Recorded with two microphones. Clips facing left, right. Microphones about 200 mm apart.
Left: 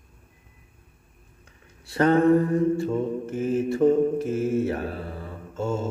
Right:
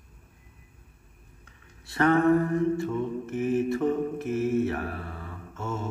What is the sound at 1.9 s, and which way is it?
Mantra, 35° left (ahead or behind).